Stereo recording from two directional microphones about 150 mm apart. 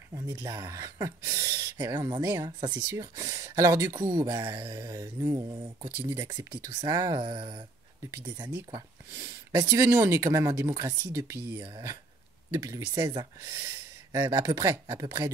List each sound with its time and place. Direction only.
0.1 s speech: 15° right (ahead or behind); by 7.6 s 35° right (ahead or behind)
9.5 s speech: 20° right (ahead or behind)